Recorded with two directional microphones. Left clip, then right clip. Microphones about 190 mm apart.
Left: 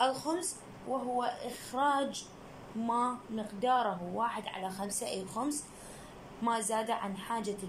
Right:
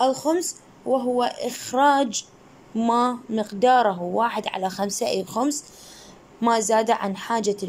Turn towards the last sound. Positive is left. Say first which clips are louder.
# right 12 dB
turn(degrees=-55)  # may be behind; listen again after turning